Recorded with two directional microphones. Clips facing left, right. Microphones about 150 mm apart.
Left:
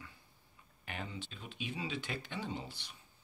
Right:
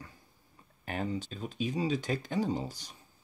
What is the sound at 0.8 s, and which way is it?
Speech, 40° right (ahead or behind).